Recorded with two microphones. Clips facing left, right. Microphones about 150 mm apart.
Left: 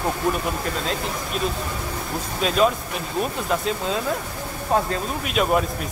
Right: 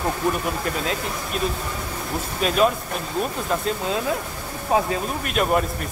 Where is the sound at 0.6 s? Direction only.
Centre (ahead or behind).